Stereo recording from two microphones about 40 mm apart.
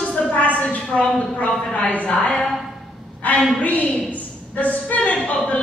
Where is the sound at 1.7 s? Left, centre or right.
Left.